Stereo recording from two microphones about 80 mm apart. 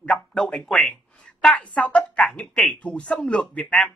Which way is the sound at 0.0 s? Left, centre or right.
Centre.